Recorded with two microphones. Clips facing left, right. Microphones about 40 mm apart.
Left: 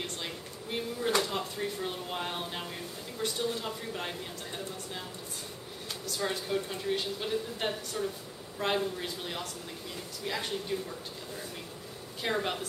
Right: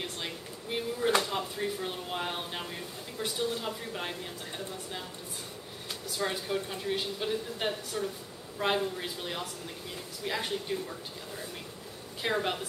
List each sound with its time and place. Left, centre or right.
0.0 s speech: centre